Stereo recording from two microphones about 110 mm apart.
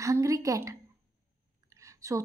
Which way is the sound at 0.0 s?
30° right (ahead or behind).